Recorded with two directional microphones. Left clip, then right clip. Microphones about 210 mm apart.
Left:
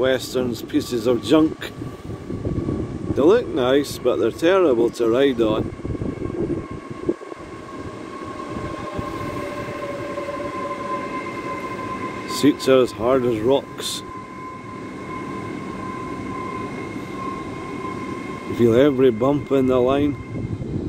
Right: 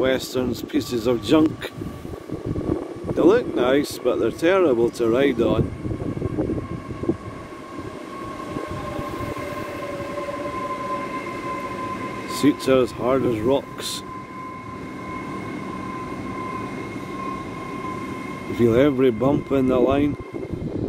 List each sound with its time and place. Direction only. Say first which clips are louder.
0.0 s speech: left 2 dB; 10° right (ahead or behind)
3.2 s speech: left 1 dB; 10° right (ahead or behind)
12.3 s speech: left 2 dB; 5° right (ahead or behind)
18.6 s speech: left 2 dB; 10° right (ahead or behind)